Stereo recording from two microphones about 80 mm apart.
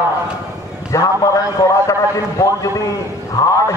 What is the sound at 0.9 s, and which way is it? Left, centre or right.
A man's voice, left.